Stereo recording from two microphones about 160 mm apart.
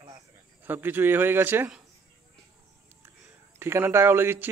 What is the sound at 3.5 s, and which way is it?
Speech, 15° right (ahead or behind).